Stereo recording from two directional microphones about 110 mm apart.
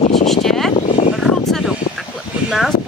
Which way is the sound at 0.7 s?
90° left.